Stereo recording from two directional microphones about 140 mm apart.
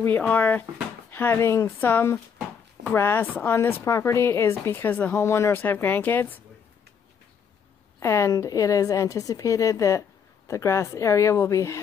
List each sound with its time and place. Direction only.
0.0 s a woman's voice: 10° left (ahead or behind)
8.0 s a woman's voice: 20° left (ahead or behind)